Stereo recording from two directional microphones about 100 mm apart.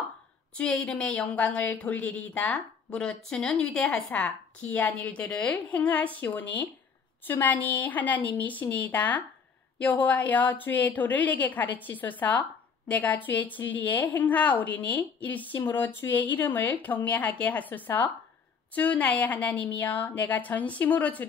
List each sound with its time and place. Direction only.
0.6 s speech: 10° left (ahead or behind)